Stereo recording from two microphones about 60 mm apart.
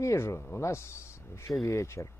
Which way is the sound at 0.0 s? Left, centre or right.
Left.